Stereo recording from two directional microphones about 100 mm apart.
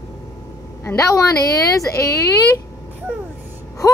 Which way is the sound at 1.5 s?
35° left (ahead or behind).